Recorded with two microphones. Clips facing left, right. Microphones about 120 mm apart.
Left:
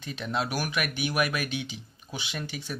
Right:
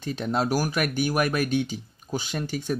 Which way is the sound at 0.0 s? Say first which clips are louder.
Right 5 dB; 40° right (ahead or behind).